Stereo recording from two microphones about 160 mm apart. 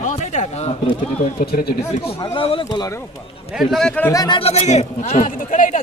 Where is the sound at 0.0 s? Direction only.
50° left (ahead or behind).